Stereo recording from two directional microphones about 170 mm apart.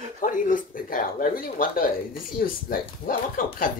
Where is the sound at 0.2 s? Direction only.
50° left (ahead or behind).